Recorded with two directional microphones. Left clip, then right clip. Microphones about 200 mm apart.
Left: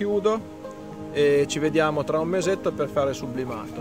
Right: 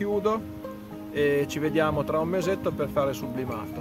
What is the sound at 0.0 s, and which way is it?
Speech, 25° left (ahead or behind).